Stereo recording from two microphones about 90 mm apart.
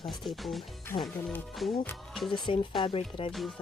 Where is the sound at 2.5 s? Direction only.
90° left.